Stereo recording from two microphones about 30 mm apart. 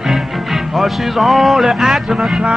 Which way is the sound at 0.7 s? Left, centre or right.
Centre.